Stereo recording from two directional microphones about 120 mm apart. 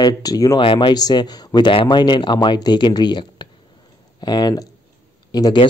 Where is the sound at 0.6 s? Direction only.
45° left (ahead or behind).